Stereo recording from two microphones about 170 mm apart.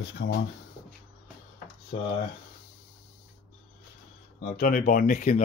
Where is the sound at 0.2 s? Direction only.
90° left.